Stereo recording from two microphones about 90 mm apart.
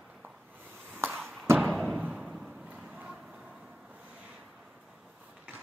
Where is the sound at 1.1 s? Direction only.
5° left (ahead or behind).